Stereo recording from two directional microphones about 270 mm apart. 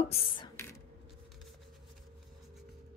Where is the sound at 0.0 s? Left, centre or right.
Left.